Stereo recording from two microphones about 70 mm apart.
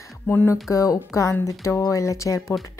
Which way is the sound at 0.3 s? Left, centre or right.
Left.